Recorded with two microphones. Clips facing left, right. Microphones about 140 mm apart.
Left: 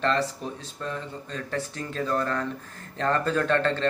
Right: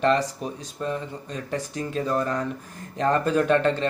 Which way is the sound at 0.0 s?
15° right (ahead or behind).